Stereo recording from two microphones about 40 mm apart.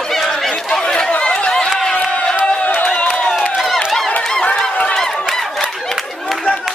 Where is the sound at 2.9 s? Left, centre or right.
Left.